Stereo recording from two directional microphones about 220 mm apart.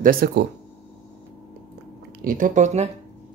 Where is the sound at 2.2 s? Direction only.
35° right (ahead or behind).